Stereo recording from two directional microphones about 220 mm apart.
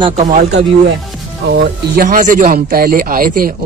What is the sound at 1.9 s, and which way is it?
A man's voice, 35° right (ahead or behind).